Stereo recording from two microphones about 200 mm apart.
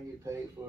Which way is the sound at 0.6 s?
20° right (ahead or behind).